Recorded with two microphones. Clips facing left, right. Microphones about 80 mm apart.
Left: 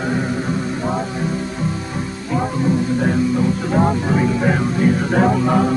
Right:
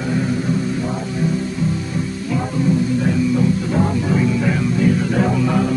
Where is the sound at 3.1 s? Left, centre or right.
Left.